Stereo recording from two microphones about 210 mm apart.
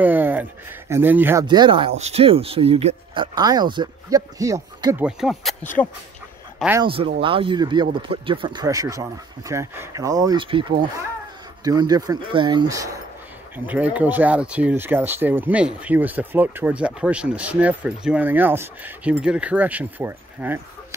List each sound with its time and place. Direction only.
0.0 s speech: 10° right (ahead or behind)
1.5 s speech: 20° right (ahead or behind); by 5.7 s centre (ahead or behind)
6.8 s speech: 25° right (ahead or behind)